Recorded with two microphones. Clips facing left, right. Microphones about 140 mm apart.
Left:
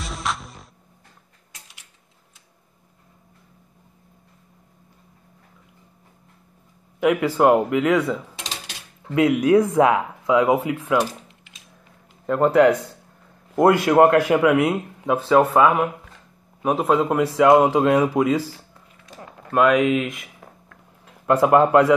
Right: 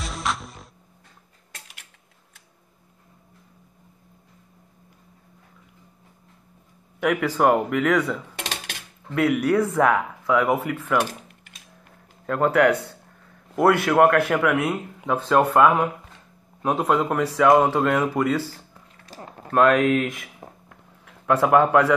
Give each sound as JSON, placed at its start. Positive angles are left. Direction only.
{"t": 0.0, "sound": "music", "side_deg": 0}
{"t": 7.0, "sound": "speech", "side_deg": 10}
{"t": 8.4, "sound": "cutlery", "side_deg": -60}
{"t": 9.1, "sound": "speech", "side_deg": 15}
{"t": 11.2, "sound": "typing", "side_deg": -50}
{"t": 12.3, "sound": "speech", "side_deg": 15}
{"t": 15.1, "sound": "speech", "side_deg": 5}
{"t": 19.0, "sound": "a sound", "side_deg": -35}
{"t": 19.5, "sound": "speech", "side_deg": 0}
{"t": 21.3, "sound": "speech", "side_deg": 15}